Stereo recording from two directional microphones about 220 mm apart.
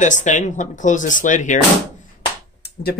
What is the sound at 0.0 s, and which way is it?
Speech, 35° left (ahead or behind).